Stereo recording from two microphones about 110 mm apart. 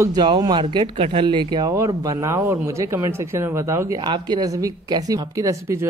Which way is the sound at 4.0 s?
40° right (ahead or behind).